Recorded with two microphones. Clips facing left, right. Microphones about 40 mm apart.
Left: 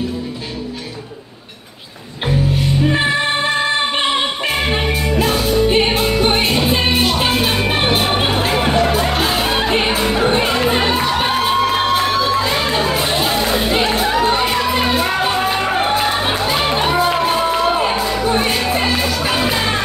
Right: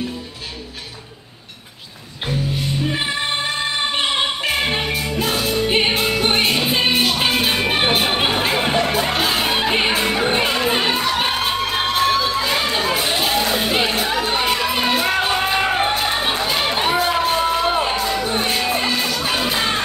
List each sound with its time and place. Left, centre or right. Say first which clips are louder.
2.9 s music: left 6 dB; centre